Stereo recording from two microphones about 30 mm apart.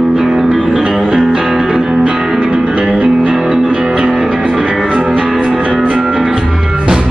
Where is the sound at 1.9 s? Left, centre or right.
Right.